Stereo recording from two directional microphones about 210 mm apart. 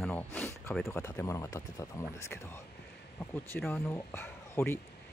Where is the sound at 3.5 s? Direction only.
10° left (ahead or behind).